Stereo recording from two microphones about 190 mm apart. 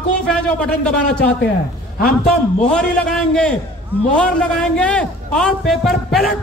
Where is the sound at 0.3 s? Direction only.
5° left (ahead or behind).